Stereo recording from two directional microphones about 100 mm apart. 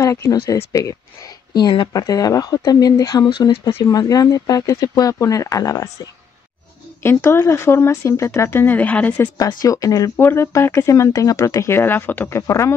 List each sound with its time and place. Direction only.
0.0 s speech: 35° left (ahead or behind)
1.5 s speech: 45° left (ahead or behind)
1.9 s speech: 35° left (ahead or behind)
7.0 s speech: 25° left (ahead or behind)
9.4 s speech: 40° left (ahead or behind)
10.1 s speech: 25° left (ahead or behind)